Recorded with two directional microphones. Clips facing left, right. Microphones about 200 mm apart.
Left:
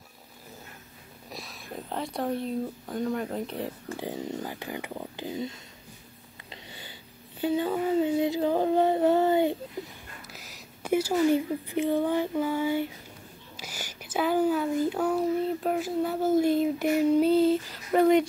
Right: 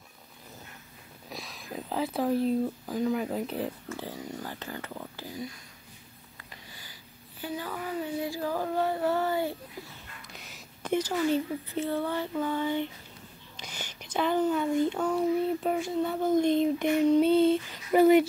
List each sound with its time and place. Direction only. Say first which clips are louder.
1.3 s speech: even; centre (ahead or behind)
3.9 s speech: left 4 dB; 20° left (ahead or behind)
10.2 s speech: left 1 dB; centre (ahead or behind)